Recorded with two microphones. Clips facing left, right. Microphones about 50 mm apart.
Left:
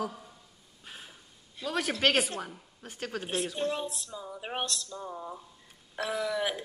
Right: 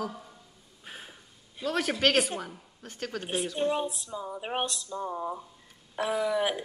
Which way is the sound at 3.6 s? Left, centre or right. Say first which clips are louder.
Right 4 dB; centre.